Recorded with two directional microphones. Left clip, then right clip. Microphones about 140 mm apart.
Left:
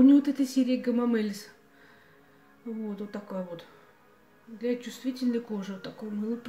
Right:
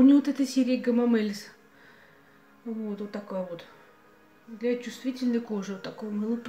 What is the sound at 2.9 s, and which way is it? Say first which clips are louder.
Speech: right 3 dB; centre (ahead or behind).